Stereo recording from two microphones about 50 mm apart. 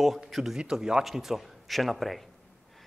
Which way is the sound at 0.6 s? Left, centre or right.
Centre.